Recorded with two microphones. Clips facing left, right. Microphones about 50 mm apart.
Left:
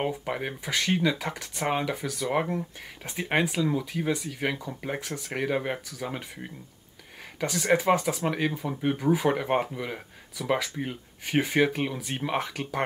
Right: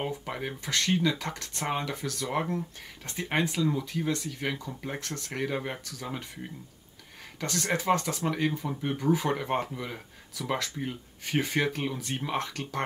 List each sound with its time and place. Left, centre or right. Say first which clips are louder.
0.0 s speech: left 4 dB; centre
7.3 s speech: left 6 dB; centre